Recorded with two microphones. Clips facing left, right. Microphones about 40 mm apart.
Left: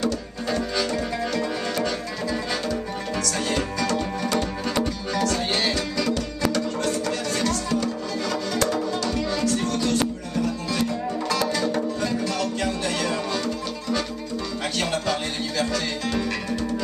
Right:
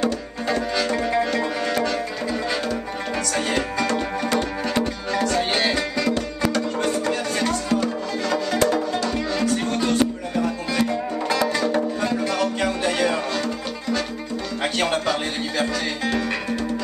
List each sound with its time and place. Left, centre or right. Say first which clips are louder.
0.0 s music: right 2 dB; centre
2.2 s music: even; centre
14.6 s music: right 5 dB; right